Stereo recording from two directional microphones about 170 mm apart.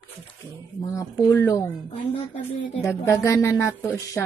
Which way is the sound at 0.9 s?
10° left (ahead or behind).